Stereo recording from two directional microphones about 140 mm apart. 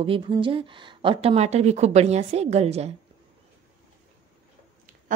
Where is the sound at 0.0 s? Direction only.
40° right (ahead or behind).